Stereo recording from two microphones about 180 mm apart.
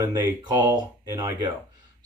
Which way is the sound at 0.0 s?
25° right (ahead or behind).